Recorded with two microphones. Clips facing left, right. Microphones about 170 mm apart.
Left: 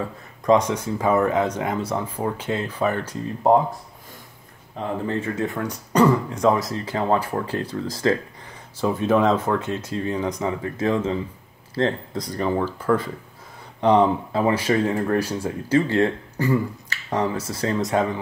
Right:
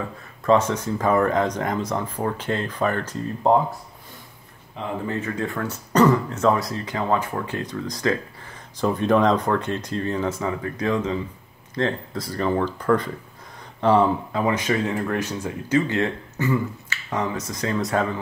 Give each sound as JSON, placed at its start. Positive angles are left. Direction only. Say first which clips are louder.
{"t": 0.4, "sound": "speech", "louder": "left 1 dB", "side_deg": 15}
{"t": 4.7, "sound": "speech", "louder": "left 2 dB", "side_deg": 30}
{"t": 6.8, "sound": "speech", "louder": "left 2 dB", "side_deg": 30}
{"t": 8.5, "sound": "speech", "louder": "even", "side_deg": 5}
{"t": 10.6, "sound": "speech", "louder": "left 2 dB", "side_deg": 25}
{"t": 12.2, "sound": "speech", "louder": "right 1 dB", "side_deg": 15}
{"t": 13.7, "sound": "speech", "louder": "left 1 dB", "side_deg": 20}
{"t": 14.3, "sound": "speech", "louder": "left 2 dB", "side_deg": 30}